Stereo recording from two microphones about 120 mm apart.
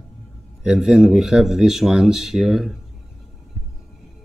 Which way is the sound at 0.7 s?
5° right (ahead or behind).